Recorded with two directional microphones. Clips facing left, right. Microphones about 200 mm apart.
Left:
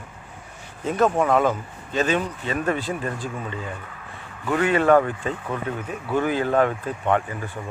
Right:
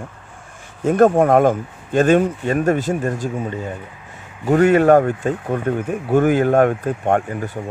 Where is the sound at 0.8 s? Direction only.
50° right (ahead or behind).